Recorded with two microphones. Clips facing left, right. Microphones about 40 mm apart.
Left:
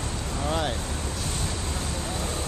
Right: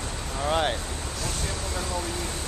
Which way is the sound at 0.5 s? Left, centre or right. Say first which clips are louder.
Right 3 dB; right.